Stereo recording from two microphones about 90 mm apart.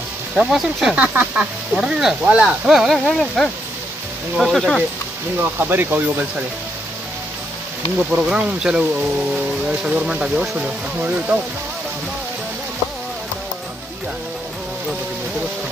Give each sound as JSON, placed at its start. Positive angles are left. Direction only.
{"t": 0.4, "sound": "speech", "side_deg": -5}
{"t": 5.4, "sound": "speech", "side_deg": -20}
{"t": 8.2, "sound": "speech", "side_deg": -10}